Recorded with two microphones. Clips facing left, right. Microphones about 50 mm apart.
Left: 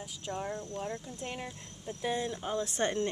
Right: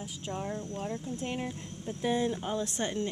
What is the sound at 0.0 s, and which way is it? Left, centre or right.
Speech, centre.